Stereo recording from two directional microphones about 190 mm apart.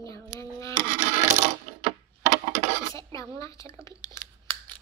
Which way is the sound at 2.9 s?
15° left (ahead or behind).